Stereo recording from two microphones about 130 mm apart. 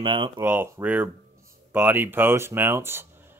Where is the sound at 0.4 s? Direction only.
15° right (ahead or behind).